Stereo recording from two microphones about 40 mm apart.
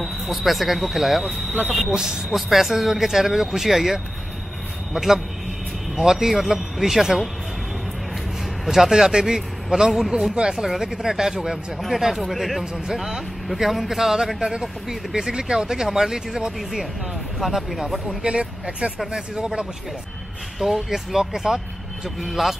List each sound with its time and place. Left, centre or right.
0.0 s speech: centre
8.6 s speech: centre
17.4 s speech: centre
18.2 s speech: right
20.6 s speech: centre